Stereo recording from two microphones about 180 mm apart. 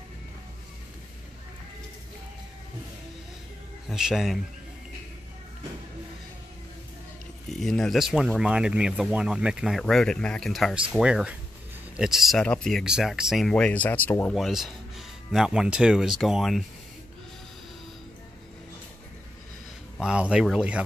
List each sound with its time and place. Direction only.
3.9 s speech: centre (ahead or behind)
7.5 s speech: centre (ahead or behind)
14.3 s speech: centre (ahead or behind)
20.0 s speech: 5° right (ahead or behind)